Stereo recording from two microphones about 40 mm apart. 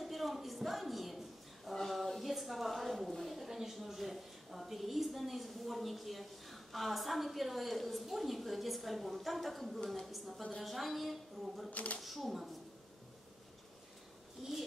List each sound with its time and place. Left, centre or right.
0.0 s a sound: centre
3.1 s a woman's voice: centre
11.7 s speech: left
12.0 s a woman's voice: centre
14.4 s speech: centre